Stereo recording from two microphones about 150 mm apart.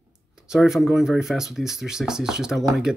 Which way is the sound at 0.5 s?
Centre (ahead or behind).